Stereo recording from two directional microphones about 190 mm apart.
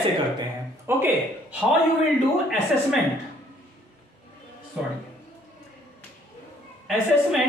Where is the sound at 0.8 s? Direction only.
10° right (ahead or behind).